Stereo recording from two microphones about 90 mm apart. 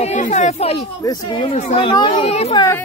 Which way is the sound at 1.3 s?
70° left (ahead or behind).